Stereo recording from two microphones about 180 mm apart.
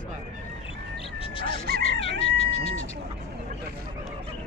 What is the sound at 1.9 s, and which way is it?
Chicken, 35° left (ahead or behind).